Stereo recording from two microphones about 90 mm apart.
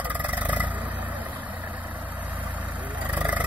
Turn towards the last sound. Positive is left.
turn(degrees=-15)  # may be behind; listen again after turning